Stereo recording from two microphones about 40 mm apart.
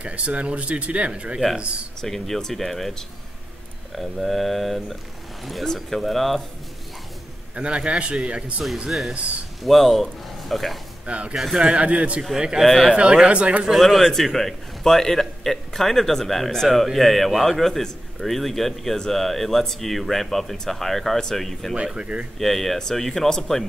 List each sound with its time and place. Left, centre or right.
0.0 s speech: right
2.0 s a man's voice: centre
7.5 s speech: right
9.6 s a man's voice: centre
11.1 s speech: right
11.3 s a man's voice: centre
11.6 s speech: right
12.2 s a man's voice: centre
12.6 s a man's voice: centre
12.9 s speech: right
13.7 s a man's voice: centre
22.0 s speech: right
22.4 s a man's voice: centre